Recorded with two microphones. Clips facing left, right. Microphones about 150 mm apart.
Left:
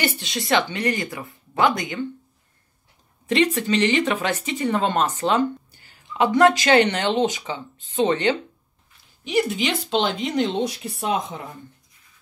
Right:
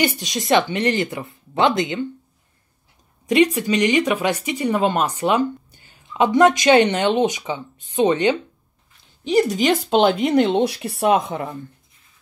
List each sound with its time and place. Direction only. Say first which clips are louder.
0.0 s speech: right 4 dB; 15° right (ahead or behind)
3.5 s speech: right 2 dB; 10° right (ahead or behind)
9.2 s speech: right 5 dB; 35° right (ahead or behind); by 11.5 s 65° right (ahead or behind)